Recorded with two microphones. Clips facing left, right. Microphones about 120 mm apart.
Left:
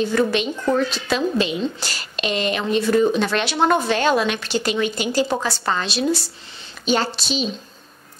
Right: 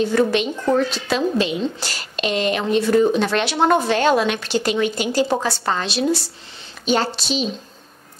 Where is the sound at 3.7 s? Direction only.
40° right (ahead or behind).